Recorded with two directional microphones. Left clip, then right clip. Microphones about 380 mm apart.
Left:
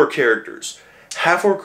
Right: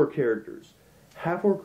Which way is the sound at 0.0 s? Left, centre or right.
Centre.